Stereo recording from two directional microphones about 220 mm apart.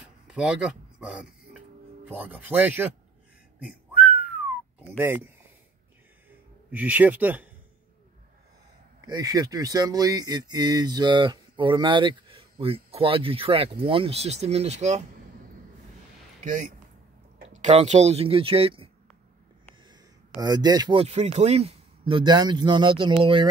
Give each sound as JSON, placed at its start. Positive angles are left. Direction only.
{"t": 0.3, "sound": "speech", "side_deg": -5}
{"t": 4.7, "sound": "speech", "side_deg": -10}
{"t": 6.7, "sound": "speech", "side_deg": -5}
{"t": 9.0, "sound": "speech", "side_deg": -15}
{"t": 16.4, "sound": "speech", "side_deg": -35}
{"t": 20.4, "sound": "speech", "side_deg": -20}